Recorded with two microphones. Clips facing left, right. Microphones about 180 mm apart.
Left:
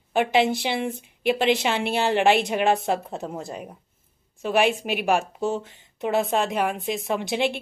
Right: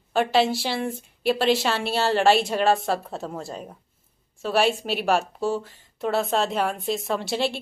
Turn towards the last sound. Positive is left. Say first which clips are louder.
# left 1 dB
turn(degrees=15)  # may be behind; listen again after turning